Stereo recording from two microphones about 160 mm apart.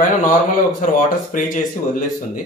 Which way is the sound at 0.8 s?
55° left (ahead or behind).